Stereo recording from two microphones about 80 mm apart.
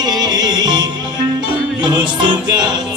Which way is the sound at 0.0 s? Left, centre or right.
Right.